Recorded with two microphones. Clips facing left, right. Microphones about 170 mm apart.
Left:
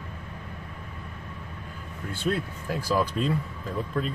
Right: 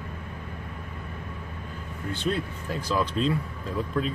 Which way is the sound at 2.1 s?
5° left (ahead or behind).